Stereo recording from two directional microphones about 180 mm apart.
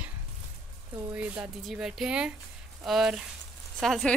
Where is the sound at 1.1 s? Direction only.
5° right (ahead or behind).